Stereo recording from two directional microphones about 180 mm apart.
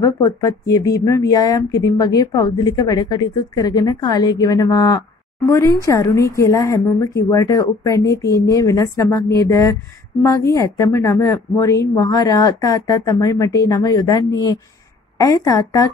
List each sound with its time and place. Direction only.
0.0 s a woman's voice: 20° left (ahead or behind)